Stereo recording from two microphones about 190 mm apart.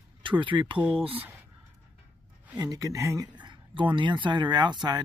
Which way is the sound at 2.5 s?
20° right (ahead or behind).